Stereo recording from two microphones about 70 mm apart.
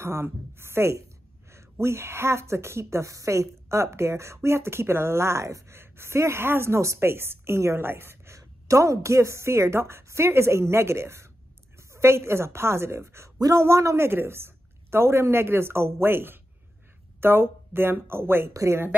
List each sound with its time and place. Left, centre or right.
0.0 s speech: right
8.4 s speech: right
18.5 s speech: right